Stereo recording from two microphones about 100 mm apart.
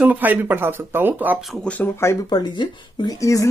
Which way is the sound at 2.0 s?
25° left (ahead or behind).